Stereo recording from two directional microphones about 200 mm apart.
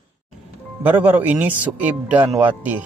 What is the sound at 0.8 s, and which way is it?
Speech, 10° right (ahead or behind).